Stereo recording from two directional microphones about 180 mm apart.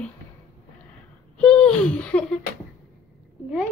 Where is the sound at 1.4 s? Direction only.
5° left (ahead or behind).